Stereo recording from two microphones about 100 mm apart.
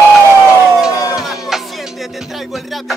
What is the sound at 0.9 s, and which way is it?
Music, 35° left (ahead or behind).